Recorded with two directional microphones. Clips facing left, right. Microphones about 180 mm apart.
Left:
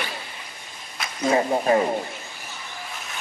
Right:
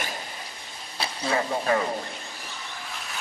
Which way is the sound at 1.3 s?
25° left (ahead or behind).